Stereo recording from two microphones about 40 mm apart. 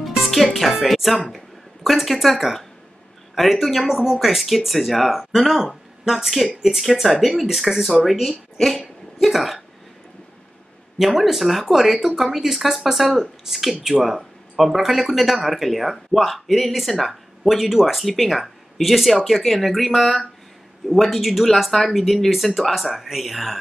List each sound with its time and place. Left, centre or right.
0.2 s music: centre
0.8 s speech: centre
3.8 s a woman's voice: centre
11.0 s speech: centre